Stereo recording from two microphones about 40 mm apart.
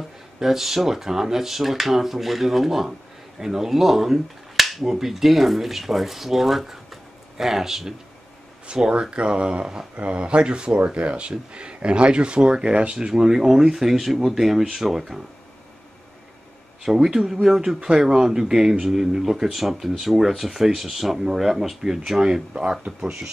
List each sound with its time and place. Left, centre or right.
0.4 s speech: centre
8.6 s speech: right
13.1 s speech: centre
16.8 s speech: centre